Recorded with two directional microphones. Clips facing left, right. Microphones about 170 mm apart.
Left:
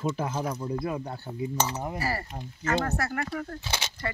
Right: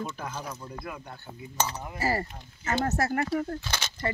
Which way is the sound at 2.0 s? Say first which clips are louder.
Right 3 dB; 25° right (ahead or behind).